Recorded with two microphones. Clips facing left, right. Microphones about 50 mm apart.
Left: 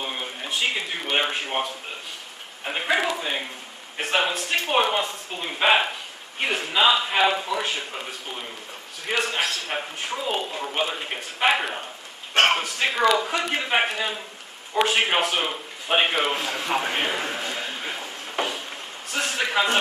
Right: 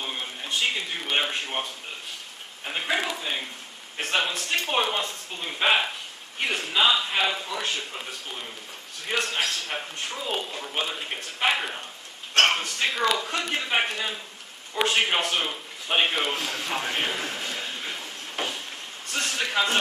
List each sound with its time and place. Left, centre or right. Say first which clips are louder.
0.0 s a man's voice: left 2 dB; centre
15.5 s a sound: left 3 dB; centre
19.1 s a man's voice: left 3 dB; centre